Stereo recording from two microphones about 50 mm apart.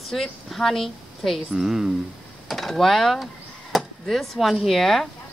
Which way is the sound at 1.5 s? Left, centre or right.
Centre.